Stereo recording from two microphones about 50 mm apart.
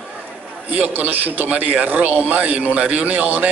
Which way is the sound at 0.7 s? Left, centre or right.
Right.